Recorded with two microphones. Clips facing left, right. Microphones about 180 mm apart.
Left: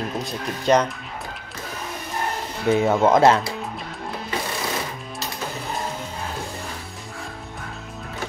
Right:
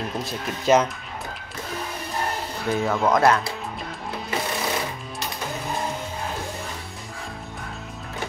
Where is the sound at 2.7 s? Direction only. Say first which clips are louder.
Left 4 dB; 20° left (ahead or behind).